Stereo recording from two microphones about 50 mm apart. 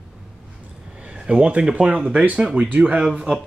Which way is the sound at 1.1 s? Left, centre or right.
Centre.